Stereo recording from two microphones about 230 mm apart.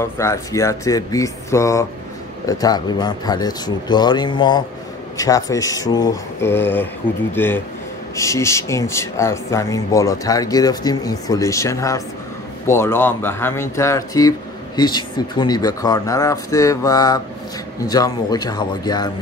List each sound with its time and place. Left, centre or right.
0.0 s speech: centre